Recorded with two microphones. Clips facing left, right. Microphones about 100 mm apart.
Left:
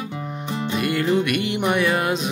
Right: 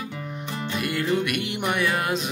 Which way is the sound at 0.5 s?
20° left (ahead or behind).